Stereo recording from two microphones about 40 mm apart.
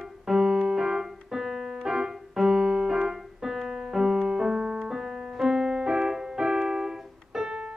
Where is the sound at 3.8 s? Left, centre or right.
Centre.